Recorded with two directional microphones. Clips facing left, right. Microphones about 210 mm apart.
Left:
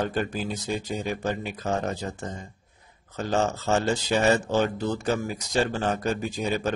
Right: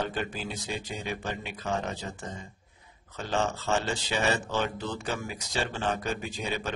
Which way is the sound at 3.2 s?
40° left (ahead or behind).